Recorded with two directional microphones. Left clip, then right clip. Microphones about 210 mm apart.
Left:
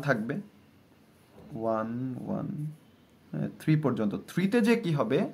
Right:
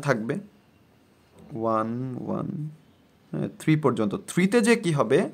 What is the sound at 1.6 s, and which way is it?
Speech, 45° right (ahead or behind).